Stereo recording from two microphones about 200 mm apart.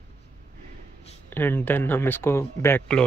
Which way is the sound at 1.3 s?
10° left (ahead or behind).